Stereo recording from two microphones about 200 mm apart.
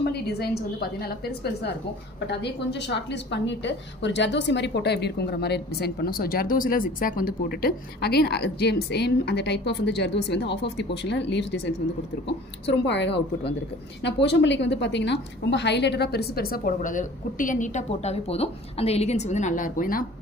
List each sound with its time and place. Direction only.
0.0 s a woman's voice: 55° left (ahead or behind)
12.6 s a woman's voice: 60° left (ahead or behind); by 20.1 s 45° left (ahead or behind)